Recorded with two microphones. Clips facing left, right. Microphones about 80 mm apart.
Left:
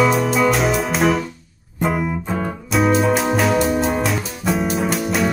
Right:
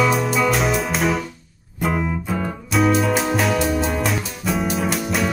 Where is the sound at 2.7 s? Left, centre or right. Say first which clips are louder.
Left 2 dB; centre.